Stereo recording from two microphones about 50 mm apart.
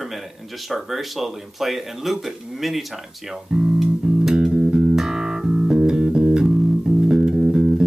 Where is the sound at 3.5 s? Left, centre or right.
Centre.